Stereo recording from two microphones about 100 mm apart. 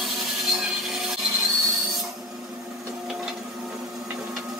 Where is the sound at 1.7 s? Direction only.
Centre (ahead or behind).